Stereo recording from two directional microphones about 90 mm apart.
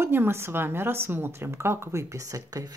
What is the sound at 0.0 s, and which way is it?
A woman's voice, 25° right (ahead or behind).